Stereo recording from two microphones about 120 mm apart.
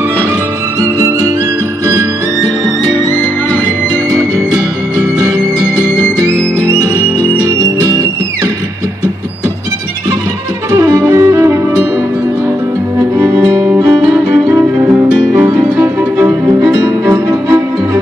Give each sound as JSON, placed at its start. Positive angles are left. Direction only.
{"t": 6.2, "sound": "music", "side_deg": -20}
{"t": 10.7, "sound": "music", "side_deg": -25}
{"t": 13.2, "sound": "music", "side_deg": -25}
{"t": 15.4, "sound": "music", "side_deg": -25}